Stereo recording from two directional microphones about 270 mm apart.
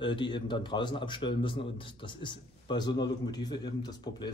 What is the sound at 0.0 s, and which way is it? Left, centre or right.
A man's voice, centre.